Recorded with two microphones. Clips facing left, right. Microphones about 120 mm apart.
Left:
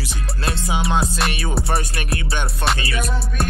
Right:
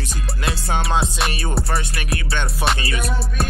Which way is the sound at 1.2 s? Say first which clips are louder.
Even; centre (ahead or behind).